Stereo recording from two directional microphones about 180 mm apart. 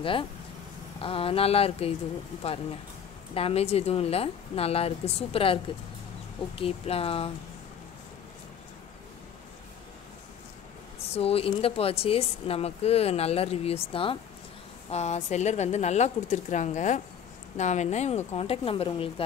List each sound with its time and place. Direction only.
0.0 s speech: 30° left (ahead or behind)
3.3 s speech: 35° left (ahead or behind)
11.1 s speech: 30° left (ahead or behind)